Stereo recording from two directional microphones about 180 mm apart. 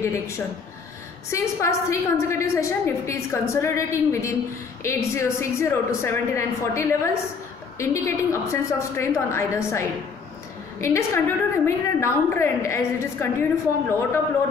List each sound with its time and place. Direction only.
1.3 s a woman's voice: 15° left (ahead or behind)